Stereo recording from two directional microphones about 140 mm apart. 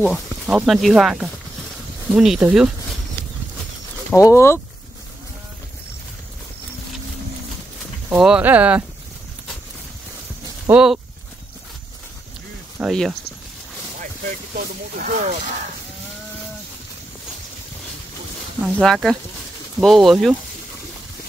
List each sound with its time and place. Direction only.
0.1 s speech: 5° right (ahead or behind)
4.1 s speech: 20° left (ahead or behind)
8.1 s speech: 10° right (ahead or behind)
10.7 s speech: 5° right (ahead or behind)
12.7 s speech: centre (ahead or behind)
15.0 s speech: 60° right (ahead or behind)
18.8 s speech: 5° left (ahead or behind)